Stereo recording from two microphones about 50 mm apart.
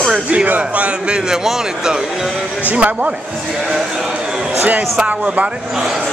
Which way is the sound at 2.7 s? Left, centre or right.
Right.